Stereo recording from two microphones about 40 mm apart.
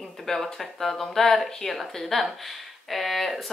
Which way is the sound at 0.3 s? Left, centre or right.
Centre.